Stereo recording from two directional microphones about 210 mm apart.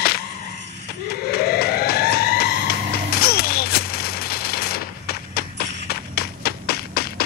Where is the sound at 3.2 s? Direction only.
50° left (ahead or behind).